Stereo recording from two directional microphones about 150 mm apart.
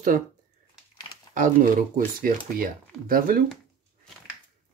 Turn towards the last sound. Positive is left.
turn(degrees=-70)  # may be behind; listen again after turning